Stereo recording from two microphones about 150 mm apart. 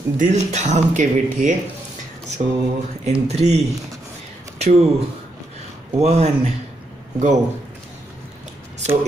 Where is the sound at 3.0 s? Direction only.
45° right (ahead or behind).